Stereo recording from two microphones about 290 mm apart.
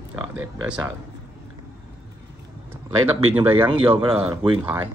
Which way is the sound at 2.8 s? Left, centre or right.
Centre.